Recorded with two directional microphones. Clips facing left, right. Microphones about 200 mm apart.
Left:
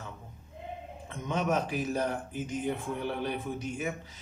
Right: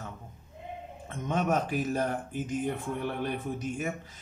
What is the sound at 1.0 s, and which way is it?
A man's voice, 50° right (ahead or behind).